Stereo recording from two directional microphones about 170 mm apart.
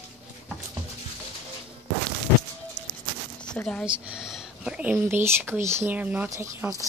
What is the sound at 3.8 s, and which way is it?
Speech, 5° right (ahead or behind).